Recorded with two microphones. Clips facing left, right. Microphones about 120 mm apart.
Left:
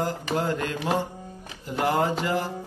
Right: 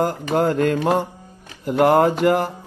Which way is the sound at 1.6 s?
60° right (ahead or behind).